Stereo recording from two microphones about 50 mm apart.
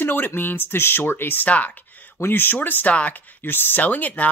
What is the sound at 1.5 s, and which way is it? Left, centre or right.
Speech, left.